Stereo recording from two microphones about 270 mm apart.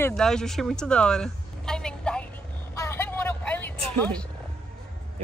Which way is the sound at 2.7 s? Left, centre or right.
Centre.